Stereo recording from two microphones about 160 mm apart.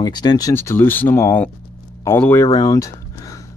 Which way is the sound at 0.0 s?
25° left (ahead or behind).